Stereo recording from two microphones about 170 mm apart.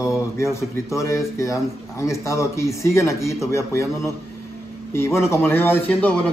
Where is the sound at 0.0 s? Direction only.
15° left (ahead or behind).